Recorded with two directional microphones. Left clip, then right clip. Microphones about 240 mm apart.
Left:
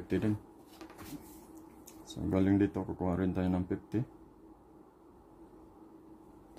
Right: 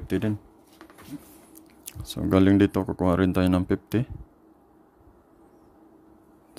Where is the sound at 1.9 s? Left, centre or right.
Right.